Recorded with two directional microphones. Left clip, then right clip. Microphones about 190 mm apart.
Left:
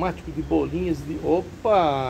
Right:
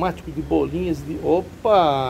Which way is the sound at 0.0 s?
15° right (ahead or behind).